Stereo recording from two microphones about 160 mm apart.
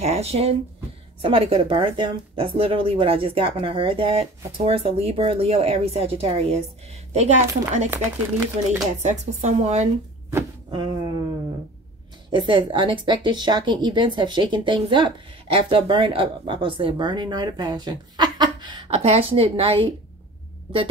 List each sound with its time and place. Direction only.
0.0 s speech: 40° right (ahead or behind)
9.0 s speech: 45° right (ahead or behind)
10.7 s a sound: 25° right (ahead or behind)
12.3 s speech: 30° right (ahead or behind)